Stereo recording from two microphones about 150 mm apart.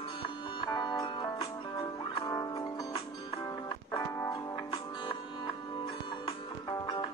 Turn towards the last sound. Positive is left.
turn(degrees=30)  # may be behind; listen again after turning